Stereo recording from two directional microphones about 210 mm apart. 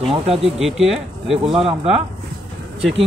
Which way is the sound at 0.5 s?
Centre (ahead or behind).